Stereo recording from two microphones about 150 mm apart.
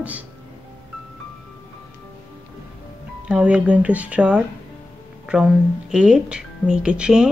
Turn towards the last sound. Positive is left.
turn(degrees=-5)  # may be behind; listen again after turning